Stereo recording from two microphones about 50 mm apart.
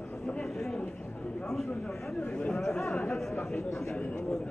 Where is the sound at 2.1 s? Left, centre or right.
Centre.